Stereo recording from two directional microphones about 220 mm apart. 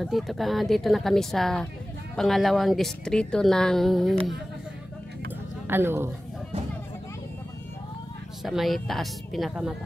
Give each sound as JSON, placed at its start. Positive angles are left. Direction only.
{"t": 0.0, "sound": "a woman's voice", "side_deg": 0}
{"t": 5.7, "sound": "a woman's voice", "side_deg": -10}
{"t": 8.5, "sound": "a woman's voice", "side_deg": 0}